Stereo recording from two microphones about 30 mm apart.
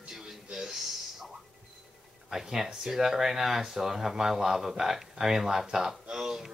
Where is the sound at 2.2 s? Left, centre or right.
Centre.